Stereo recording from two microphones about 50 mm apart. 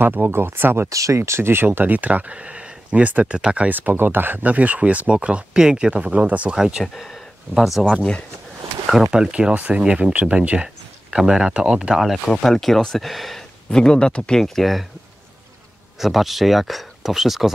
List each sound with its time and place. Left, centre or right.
0.0 s speech: right
0.8 s speech: right
3.6 s speech: right
6.5 s speech: centre
6.8 s speech: centre
7.8 s speech: centre
9.0 s speech: centre
11.9 s speech: centre
13.7 s speech: centre
14.4 s speech: centre
16.0 s speech: centre